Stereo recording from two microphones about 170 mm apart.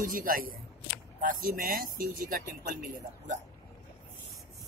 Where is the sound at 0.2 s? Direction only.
60° right (ahead or behind).